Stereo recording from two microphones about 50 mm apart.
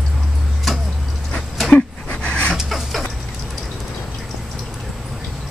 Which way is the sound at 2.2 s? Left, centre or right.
Left.